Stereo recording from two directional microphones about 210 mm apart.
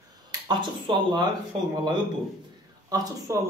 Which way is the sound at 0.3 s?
20° right (ahead or behind).